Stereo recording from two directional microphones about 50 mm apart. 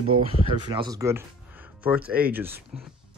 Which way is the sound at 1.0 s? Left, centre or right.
Right.